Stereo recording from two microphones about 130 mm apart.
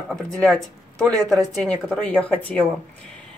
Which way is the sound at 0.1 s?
5° left (ahead or behind).